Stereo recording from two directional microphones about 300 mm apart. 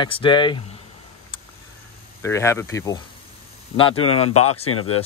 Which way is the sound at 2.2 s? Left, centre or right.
Centre.